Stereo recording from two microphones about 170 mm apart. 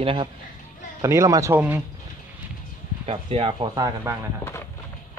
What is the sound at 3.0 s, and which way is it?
Speech, 35° right (ahead or behind).